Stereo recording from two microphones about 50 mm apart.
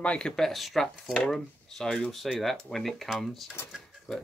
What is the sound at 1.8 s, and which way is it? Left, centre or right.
Speech, centre.